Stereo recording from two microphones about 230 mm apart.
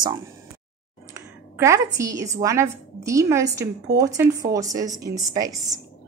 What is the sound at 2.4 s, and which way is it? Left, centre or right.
Speech, centre.